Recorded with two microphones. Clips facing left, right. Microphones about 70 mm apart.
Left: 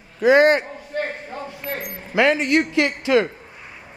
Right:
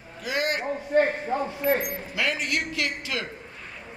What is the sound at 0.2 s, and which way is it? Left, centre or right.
Speech, left.